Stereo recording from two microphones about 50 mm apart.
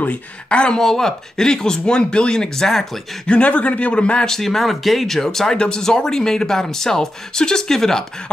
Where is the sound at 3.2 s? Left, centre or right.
Left.